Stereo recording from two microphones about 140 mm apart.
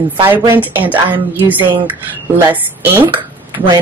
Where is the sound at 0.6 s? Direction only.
10° right (ahead or behind).